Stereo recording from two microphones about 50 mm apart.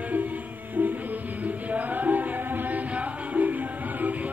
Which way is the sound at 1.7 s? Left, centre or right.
Right.